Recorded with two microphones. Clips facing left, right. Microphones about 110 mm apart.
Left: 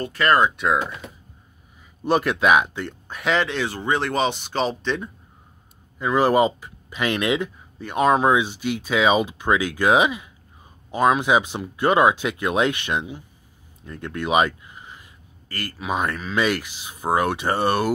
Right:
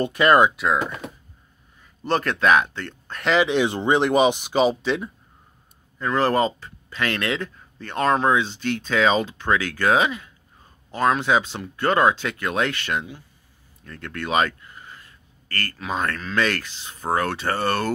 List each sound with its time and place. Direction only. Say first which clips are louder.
0.0 s speech: right 3 dB; 15° right (ahead or behind)
0.6 s speech: left 1 dB; centre (ahead or behind)
2.0 s speech: left 1 dB; 10° left (ahead or behind)
3.3 s speech: right 8 dB; 15° right (ahead or behind)
5.9 s speech: left 3 dB; 10° left (ahead or behind)